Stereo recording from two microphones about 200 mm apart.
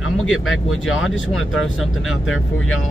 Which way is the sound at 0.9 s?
75° left (ahead or behind).